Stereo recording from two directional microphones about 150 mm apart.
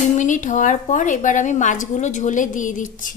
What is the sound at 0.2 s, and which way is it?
A woman's voice, 55° left (ahead or behind).